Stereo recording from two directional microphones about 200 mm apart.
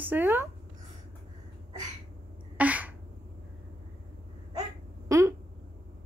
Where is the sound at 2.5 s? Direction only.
5° right (ahead or behind).